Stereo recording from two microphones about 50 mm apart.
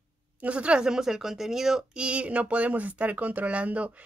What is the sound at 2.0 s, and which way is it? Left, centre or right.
Speech, right.